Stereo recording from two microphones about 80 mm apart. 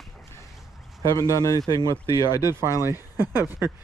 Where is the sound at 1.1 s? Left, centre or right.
Left.